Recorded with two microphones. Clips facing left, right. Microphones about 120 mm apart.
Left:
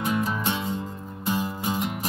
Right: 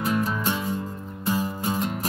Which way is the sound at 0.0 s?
20° left (ahead or behind).